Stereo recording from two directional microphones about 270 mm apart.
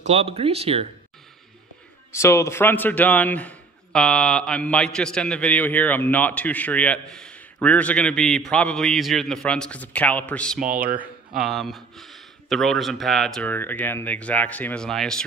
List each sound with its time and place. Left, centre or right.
0.0 s speech: right
2.1 s a man's voice: centre